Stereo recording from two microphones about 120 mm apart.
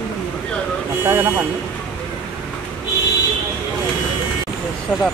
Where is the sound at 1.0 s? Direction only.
20° right (ahead or behind).